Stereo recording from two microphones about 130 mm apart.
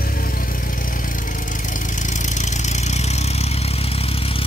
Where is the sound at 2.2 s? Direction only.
65° left (ahead or behind).